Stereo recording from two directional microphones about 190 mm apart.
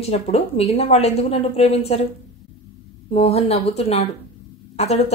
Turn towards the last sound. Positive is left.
turn(degrees=35)  # may be behind; listen again after turning